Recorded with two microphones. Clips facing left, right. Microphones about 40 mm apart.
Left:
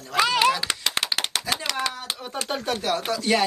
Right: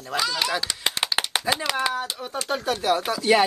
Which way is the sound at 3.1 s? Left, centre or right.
Centre.